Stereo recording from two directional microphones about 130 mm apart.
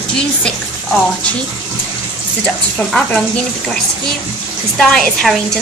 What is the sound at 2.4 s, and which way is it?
Speech, 5° left (ahead or behind).